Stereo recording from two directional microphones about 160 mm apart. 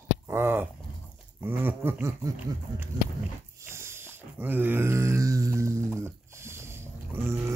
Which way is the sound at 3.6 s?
15° right (ahead or behind).